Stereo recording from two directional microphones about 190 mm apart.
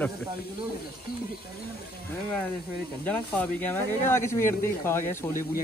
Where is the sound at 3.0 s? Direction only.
10° left (ahead or behind).